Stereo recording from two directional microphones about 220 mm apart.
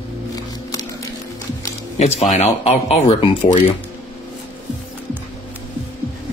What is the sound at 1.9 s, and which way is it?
Speech, 30° left (ahead or behind).